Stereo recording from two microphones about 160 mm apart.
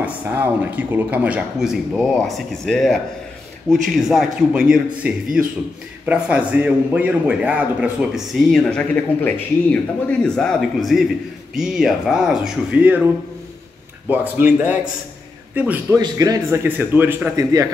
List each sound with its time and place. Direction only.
0.0 s a man's voice: 10° right (ahead or behind)
15.5 s a man's voice: 10° right (ahead or behind)
16.0 s a man's voice: 20° right (ahead or behind)